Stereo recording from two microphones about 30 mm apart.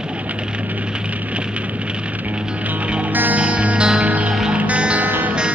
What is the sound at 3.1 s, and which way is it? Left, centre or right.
Music, right.